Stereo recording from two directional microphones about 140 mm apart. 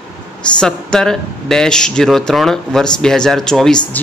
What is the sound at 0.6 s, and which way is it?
A man's voice, 5° left (ahead or behind).